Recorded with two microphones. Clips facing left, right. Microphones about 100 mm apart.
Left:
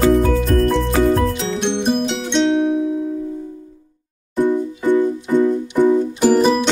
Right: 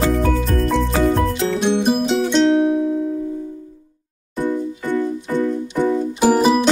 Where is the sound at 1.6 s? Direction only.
5° right (ahead or behind).